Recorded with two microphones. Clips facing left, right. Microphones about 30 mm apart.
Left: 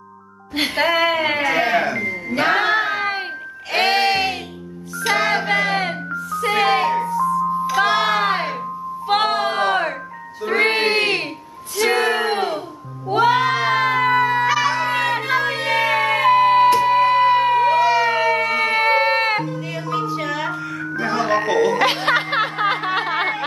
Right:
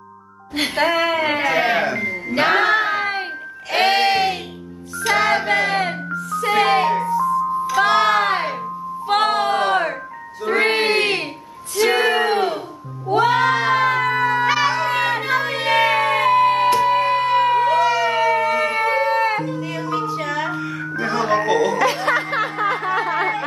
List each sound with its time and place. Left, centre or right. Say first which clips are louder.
0.6 s a sound: left 1 dB; centre
2.0 s music: even; centre
2.5 s a sound: right 2 dB; centre
3.7 s music: right 1 dB; centre
10.4 s child singing: even; centre
11.7 s a sound: right 1 dB; centre
14.4 s a sound: even; centre
14.8 s run: even; centre
15.5 s music: right 2 dB; centre; by 19.4 s left
19.4 s music: right 1 dB; centre
20.5 s music: right 1 dB; centre
20.9 s music: even; centre
21.7 s music: left 1 dB; left
22.9 s snicker: even; left